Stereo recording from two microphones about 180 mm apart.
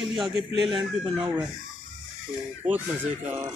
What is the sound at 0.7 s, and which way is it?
Speech, 25° right (ahead or behind).